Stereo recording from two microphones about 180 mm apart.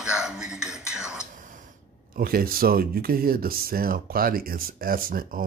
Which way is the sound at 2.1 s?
55° right (ahead or behind).